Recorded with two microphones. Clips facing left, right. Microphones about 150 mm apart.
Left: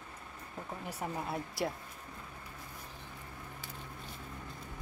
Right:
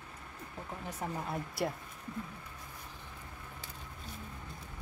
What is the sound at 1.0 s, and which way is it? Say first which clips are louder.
Speech: even; 5° left (ahead or behind).